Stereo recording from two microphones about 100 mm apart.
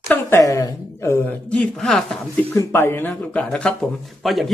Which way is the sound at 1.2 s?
10° left (ahead or behind).